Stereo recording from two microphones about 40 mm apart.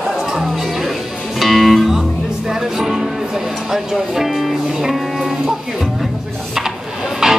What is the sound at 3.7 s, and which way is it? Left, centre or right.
Speech, centre.